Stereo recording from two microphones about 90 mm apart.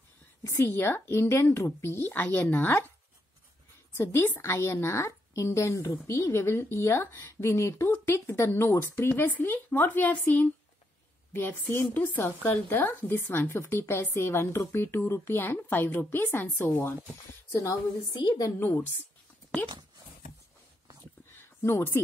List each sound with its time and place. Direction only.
0.4 s a woman's voice: 30° left (ahead or behind)
3.9 s a woman's voice: 30° left (ahead or behind)
18.1 s a woman's voice: 50° left (ahead or behind)
18.6 s a woman's voice: 20° left (ahead or behind)
21.3 s a sound: 25° left (ahead or behind)